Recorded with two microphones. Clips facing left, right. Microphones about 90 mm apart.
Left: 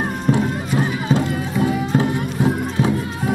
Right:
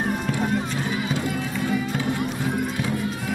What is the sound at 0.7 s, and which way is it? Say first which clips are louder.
Music: left 7 dB; 50° left (ahead or behind).